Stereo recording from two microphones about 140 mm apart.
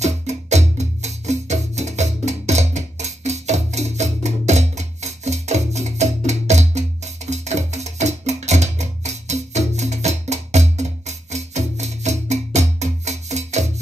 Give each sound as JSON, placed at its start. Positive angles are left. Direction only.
{"t": 0.0, "sound": "music", "side_deg": -55}